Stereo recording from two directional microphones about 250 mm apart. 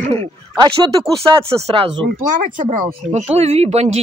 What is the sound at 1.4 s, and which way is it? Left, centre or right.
Speech, right.